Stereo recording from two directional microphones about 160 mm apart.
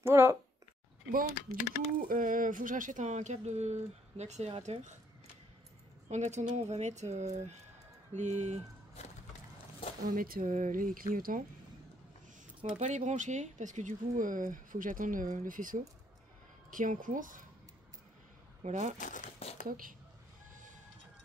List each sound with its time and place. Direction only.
0.0 s speech: 15° right (ahead or behind)
1.1 s speech: 60° right (ahead or behind); by 4.7 s 40° right (ahead or behind)
6.0 s speech: 45° right (ahead or behind)
10.0 s speech: 65° right (ahead or behind)
12.7 s speech: 50° right (ahead or behind)
18.6 s speech: 50° right (ahead or behind)
18.9 s crumpling: 55° left (ahead or behind)
19.7 s speech: 60° right (ahead or behind)